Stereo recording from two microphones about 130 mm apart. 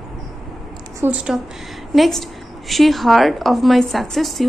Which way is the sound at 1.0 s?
10° right (ahead or behind).